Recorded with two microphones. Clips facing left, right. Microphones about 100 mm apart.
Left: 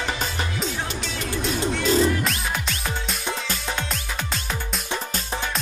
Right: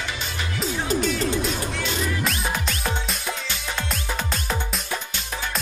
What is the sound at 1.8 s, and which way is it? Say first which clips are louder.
Music: left 10 dB; 35° left (ahead or behind).